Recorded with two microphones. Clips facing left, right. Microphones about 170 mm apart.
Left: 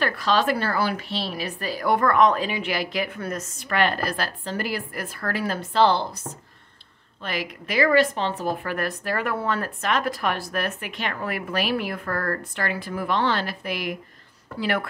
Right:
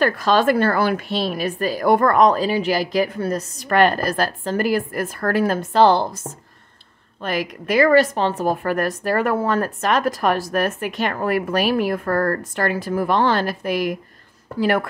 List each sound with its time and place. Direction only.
0.0 s a woman's voice: 45° right (ahead or behind)